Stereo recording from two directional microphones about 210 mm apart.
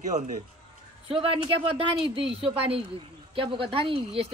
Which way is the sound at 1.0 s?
25° right (ahead or behind).